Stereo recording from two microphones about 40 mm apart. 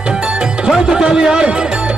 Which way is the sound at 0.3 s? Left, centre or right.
Centre.